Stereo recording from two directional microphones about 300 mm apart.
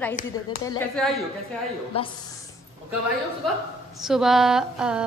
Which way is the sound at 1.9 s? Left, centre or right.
Centre.